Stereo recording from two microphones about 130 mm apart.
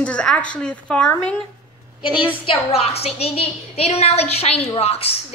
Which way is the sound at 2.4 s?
50° left (ahead or behind).